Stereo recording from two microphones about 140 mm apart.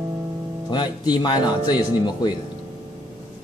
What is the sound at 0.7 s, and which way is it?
Speech, 30° left (ahead or behind).